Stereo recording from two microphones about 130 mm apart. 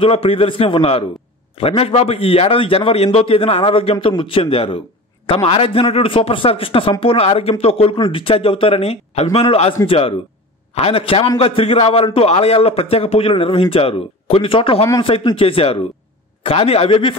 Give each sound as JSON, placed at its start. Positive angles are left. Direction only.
{"t": 0.0, "sound": "a man's voice", "side_deg": 50}